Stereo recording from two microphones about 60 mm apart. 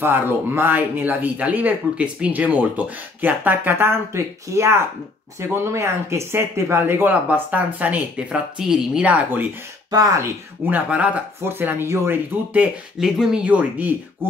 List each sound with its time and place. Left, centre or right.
0.0 s speech: right
7.1 s speech: right
8.5 s a woman's voice: centre
9.0 s speech: right
9.8 s speech: right
10.6 s speech: right
13.0 s a woman's voice: centre
13.4 s speech: right